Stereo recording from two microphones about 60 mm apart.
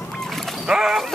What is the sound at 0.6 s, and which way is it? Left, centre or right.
Wild animals, centre.